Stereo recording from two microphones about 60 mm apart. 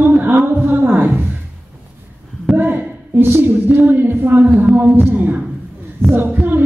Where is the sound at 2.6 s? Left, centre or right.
Right.